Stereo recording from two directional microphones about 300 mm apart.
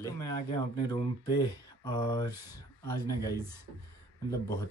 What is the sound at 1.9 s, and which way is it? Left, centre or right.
Speech, centre.